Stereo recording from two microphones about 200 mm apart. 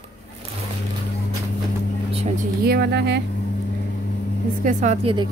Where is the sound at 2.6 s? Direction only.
55° right (ahead or behind).